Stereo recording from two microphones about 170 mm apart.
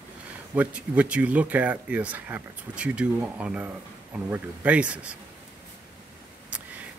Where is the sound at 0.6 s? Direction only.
10° right (ahead or behind).